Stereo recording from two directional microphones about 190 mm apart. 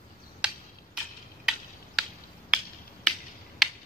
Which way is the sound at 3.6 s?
Centre (ahead or behind).